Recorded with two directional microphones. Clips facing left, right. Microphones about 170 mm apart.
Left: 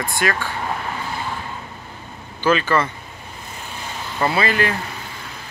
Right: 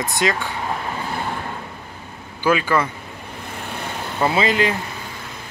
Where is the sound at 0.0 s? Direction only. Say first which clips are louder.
Right 1 dB; 20° right (ahead or behind).